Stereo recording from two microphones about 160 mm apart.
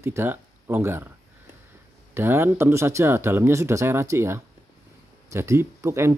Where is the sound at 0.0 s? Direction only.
15° right (ahead or behind).